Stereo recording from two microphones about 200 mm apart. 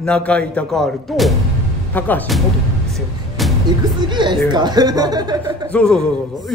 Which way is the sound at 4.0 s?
25° right (ahead or behind).